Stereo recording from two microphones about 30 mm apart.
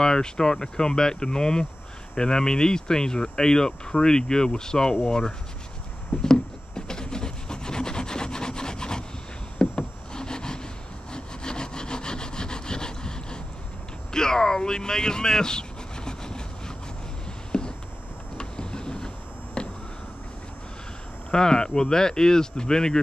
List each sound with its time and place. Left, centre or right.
0.0 s speech: left
6.2 s rub: left
9.6 s knock: left
11.1 s sawing: left
14.1 s a sound: left
18.4 s vehicle: left
19.6 s a sound: left
21.3 s speech: left